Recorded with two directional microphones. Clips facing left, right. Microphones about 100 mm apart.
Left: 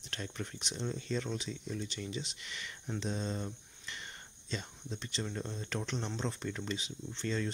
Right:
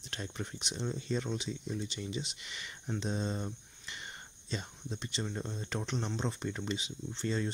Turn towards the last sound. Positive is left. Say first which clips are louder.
# right 1 dB
turn(degrees=-20)  # may be behind; listen again after turning